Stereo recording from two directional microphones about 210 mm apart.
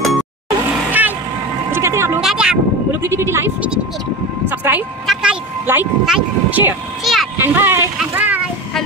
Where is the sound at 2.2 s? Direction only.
5° right (ahead or behind).